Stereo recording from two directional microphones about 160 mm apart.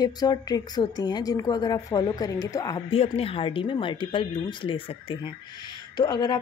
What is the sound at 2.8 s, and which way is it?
A woman's voice, 35° left (ahead or behind).